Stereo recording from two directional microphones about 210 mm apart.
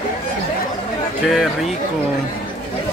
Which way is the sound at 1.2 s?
Centre (ahead or behind).